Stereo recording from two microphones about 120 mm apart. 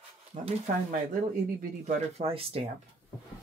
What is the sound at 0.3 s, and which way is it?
Speech, 80° right.